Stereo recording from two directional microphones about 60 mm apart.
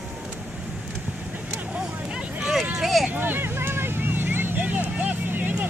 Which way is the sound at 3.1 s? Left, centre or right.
Right.